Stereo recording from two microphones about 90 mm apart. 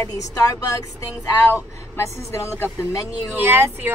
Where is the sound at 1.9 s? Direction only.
30° left (ahead or behind).